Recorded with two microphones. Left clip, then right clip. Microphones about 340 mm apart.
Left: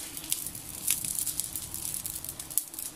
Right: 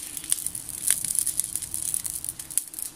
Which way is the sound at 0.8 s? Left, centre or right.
Right.